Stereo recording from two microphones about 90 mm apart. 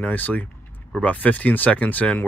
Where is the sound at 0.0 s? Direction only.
20° left (ahead or behind).